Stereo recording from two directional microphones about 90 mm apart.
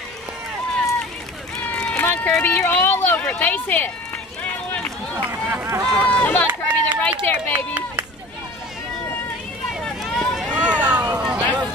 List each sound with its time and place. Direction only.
1.8 s speech: 15° left (ahead or behind)
5.1 s run: 25° right (ahead or behind)
5.8 s run: 45° right (ahead or behind)
6.1 s run: 20° left (ahead or behind)
7.0 s speech: 20° left (ahead or behind)
9.8 s run: 5° left (ahead or behind)
10.5 s vehicle: 15° right (ahead or behind)